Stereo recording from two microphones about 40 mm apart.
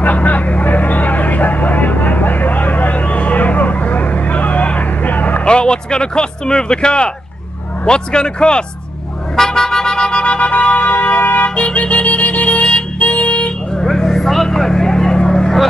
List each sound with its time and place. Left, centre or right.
0.0 s vehicle: left
5.4 s speech: left
9.4 s a sound: centre
10.2 s music: left
11.5 s music: left
13.8 s vehicle: centre